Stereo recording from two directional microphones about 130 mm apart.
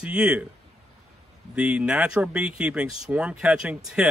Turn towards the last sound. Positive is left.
turn(degrees=-5)  # may be behind; listen again after turning